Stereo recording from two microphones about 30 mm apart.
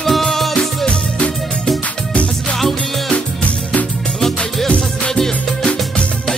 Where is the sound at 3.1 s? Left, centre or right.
Left.